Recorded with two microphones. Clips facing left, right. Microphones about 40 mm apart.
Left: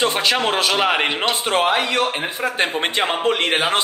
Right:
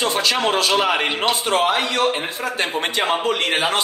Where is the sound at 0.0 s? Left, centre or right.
Left.